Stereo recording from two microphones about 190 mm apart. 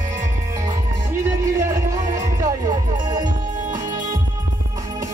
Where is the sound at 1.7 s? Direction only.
20° right (ahead or behind).